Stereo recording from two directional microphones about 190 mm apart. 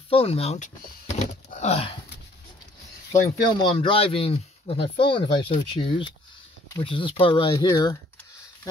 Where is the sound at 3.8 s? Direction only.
30° left (ahead or behind).